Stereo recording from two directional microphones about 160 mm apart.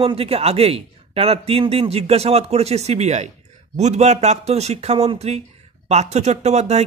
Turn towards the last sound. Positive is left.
turn(degrees=-45)  # may be behind; listen again after turning